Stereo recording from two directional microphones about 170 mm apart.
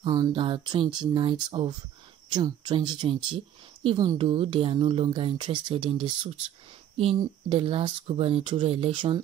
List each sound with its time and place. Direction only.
0.0 s speech: 25° right (ahead or behind)